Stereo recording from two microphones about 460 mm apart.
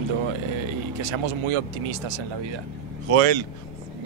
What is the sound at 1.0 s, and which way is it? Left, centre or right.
Speech, right.